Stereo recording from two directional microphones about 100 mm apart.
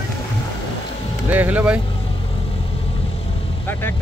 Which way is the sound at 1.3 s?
15° right (ahead or behind).